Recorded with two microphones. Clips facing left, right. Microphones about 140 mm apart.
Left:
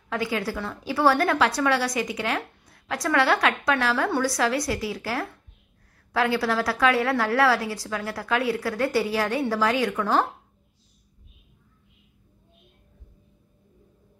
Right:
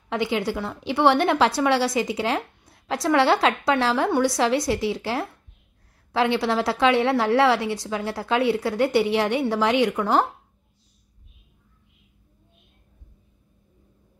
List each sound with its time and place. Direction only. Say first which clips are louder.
0.1 s a woman's voice: right 3 dB; 25° right (ahead or behind)